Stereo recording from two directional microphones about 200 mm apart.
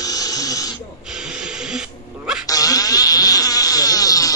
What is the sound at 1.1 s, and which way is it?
Music, 5° right (ahead or behind).